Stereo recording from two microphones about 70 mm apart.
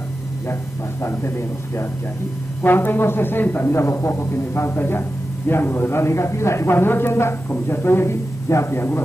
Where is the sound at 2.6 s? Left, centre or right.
Left.